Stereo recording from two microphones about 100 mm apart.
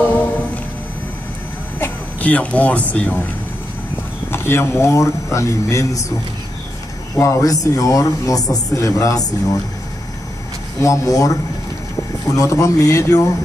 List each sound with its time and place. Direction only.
1.8 s speech: 15° left (ahead or behind)
4.3 s speech: 25° left (ahead or behind)
7.2 s speech: 30° left (ahead or behind)
10.8 s speech: 35° left (ahead or behind)